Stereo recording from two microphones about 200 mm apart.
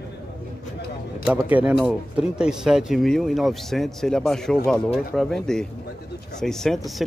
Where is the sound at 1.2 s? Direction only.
5° right (ahead or behind).